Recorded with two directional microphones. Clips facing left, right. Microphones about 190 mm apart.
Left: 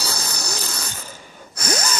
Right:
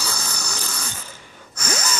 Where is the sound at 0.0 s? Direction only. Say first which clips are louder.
Left 2 dB; 35° left (ahead or behind).